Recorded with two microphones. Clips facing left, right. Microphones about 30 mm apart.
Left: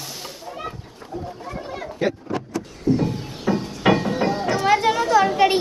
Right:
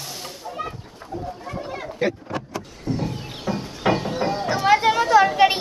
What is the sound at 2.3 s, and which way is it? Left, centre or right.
Vehicle, centre.